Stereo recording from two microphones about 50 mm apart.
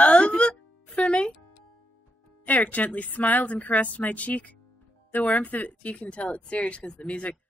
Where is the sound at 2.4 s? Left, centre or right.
Left.